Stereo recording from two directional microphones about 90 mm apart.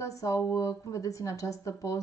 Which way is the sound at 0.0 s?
35° left (ahead or behind).